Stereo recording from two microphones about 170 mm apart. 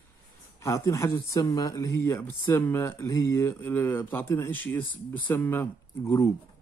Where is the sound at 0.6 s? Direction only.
20° left (ahead or behind).